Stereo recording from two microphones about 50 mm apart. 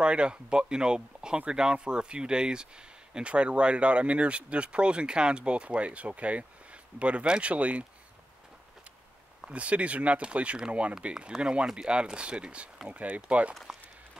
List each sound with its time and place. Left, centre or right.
0.0 s speech: right
9.5 s speech: right